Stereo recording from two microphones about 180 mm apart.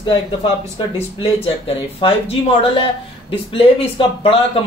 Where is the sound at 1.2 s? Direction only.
30° left (ahead or behind).